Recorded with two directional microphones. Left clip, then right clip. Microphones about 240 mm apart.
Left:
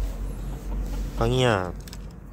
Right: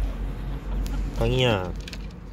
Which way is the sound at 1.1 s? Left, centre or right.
Centre.